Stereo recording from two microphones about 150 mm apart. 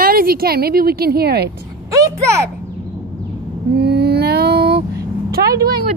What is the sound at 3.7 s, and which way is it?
Mantra, 90° right.